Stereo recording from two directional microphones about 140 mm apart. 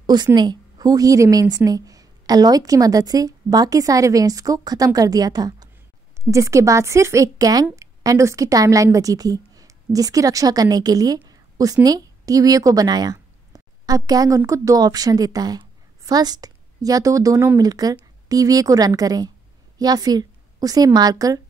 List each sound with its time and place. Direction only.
0.0 s a woman's voice: 30° right (ahead or behind)